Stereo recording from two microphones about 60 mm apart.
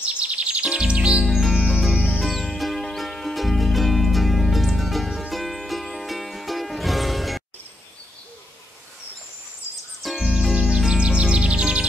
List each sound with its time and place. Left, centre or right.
0.0 s music: centre
1.2 s music: centre
10.0 s music: centre